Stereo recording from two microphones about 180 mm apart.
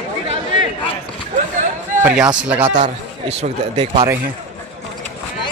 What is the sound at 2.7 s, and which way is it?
Speech, 35° right (ahead or behind).